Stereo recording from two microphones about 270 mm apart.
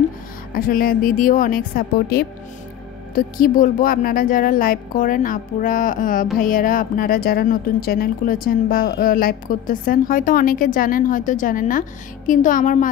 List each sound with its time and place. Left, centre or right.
0.6 s a woman's voice: left